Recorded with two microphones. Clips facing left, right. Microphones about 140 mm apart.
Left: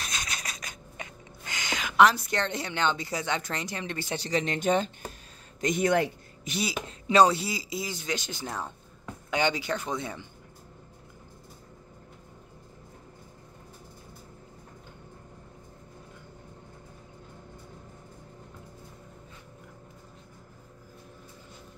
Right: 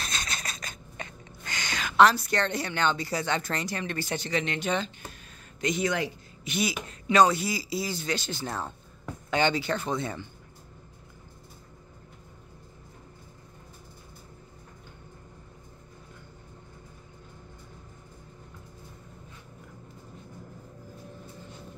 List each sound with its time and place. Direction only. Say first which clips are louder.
0.0 s a sound: right 1 dB; 15° left (ahead or behind)
4.2 s speech: left 1 dB; 35° left (ahead or behind); by 6.5 s 55° left (ahead or behind)
6.5 s speech: right 2 dB; 30° left (ahead or behind); by 10.2 s 15° left (ahead or behind)